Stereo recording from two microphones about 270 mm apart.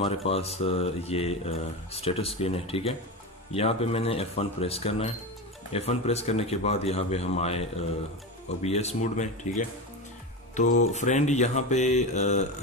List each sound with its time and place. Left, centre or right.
0.0 s speech: left
10.8 s speech: left